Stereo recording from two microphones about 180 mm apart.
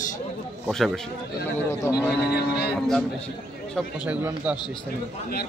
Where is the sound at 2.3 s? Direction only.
60° left (ahead or behind).